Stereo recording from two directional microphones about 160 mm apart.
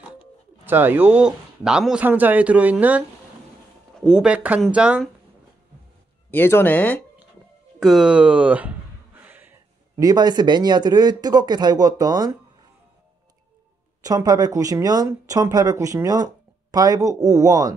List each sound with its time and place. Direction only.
0.2 s speech: 15° right (ahead or behind)
6.3 s speech: 15° left (ahead or behind)
7.8 s a sound: 5° right (ahead or behind)
9.9 s speech: 25° right (ahead or behind)
14.0 s speech: 25° right (ahead or behind)